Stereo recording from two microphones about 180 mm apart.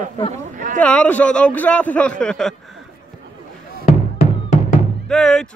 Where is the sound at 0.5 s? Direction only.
50° right (ahead or behind).